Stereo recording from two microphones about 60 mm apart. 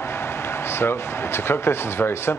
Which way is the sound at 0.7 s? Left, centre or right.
Left.